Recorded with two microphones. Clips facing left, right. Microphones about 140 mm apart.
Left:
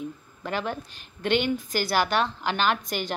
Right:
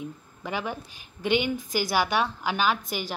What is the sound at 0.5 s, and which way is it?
A woman's voice, 10° right (ahead or behind).